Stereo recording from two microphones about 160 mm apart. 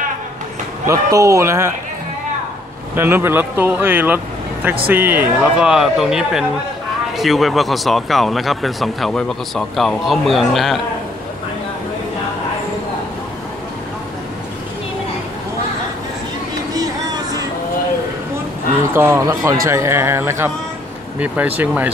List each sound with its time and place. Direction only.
0.8 s speech: 20° right (ahead or behind)
3.0 s speech: 15° right (ahead or behind); by 10.8 s centre (ahead or behind)
16.7 s a sound: 25° right (ahead or behind)
18.9 s speech: 15° right (ahead or behind)
21.5 s speech: 10° right (ahead or behind)